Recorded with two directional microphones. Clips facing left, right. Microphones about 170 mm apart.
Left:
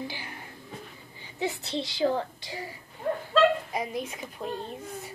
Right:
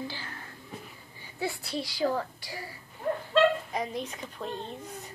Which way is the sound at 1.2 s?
20° left (ahead or behind).